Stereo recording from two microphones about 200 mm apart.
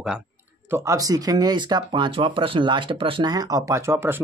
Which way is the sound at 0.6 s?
15° right (ahead or behind).